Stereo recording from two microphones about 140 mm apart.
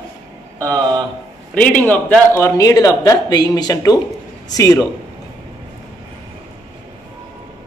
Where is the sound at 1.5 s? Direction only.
10° left (ahead or behind); by 4.8 s 25° left (ahead or behind).